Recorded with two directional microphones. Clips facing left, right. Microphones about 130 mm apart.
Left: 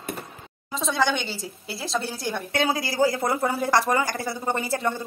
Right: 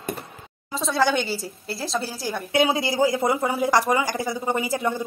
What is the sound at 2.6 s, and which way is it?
A woman's voice, 20° right (ahead or behind).